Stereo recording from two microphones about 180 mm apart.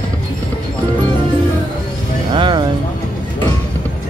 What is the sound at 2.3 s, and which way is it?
Speech, 25° right (ahead or behind).